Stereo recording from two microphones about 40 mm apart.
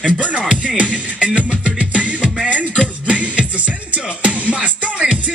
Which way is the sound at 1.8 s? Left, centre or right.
Right.